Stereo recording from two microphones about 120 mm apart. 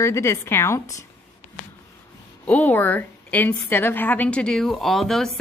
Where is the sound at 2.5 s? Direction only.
15° left (ahead or behind).